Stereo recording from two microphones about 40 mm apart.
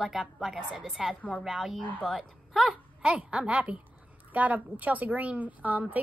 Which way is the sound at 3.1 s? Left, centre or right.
Right.